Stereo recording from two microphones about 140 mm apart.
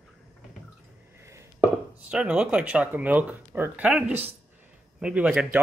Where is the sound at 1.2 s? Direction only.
20° right (ahead or behind).